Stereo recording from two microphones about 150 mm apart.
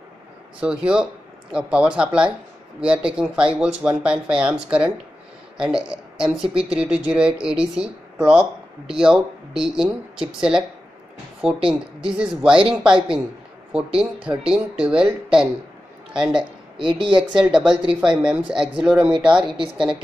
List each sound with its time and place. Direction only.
0.6 s speech: 5° right (ahead or behind)
16.7 s a woman's voice: 35° right (ahead or behind)
17.4 s speech: 5° right (ahead or behind)
19.4 s a woman's voice: 35° right (ahead or behind)